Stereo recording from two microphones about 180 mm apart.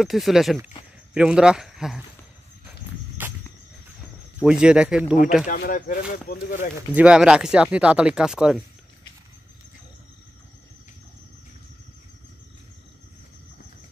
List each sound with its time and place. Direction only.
0.0 s speech: centre (ahead or behind)
3.2 s a sound: 10° right (ahead or behind)
4.4 s speech: 5° right (ahead or behind)
5.5 s speech: 50° left (ahead or behind)
6.9 s speech: 5° right (ahead or behind)